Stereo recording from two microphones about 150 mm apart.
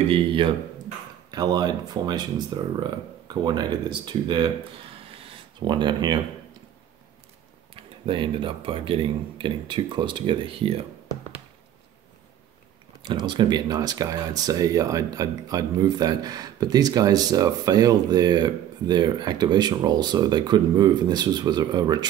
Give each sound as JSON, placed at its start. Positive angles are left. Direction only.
{"t": 0.1, "sound": "speech", "side_deg": -35}
{"t": 5.0, "sound": "writing", "side_deg": -40}
{"t": 7.7, "sound": "speech", "side_deg": -35}
{"t": 13.1, "sound": "speech", "side_deg": -30}